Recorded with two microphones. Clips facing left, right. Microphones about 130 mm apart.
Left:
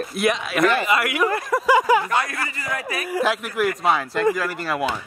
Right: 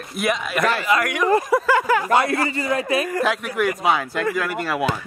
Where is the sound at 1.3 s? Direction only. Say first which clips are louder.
Right 6 dB; 20° right (ahead or behind).